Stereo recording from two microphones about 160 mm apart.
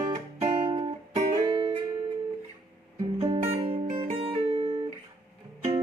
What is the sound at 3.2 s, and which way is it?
Music, 35° right (ahead or behind).